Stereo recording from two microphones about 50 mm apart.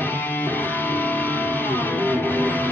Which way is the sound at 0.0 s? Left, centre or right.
Left.